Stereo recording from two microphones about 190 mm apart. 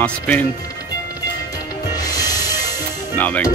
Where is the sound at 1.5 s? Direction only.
20° left (ahead or behind).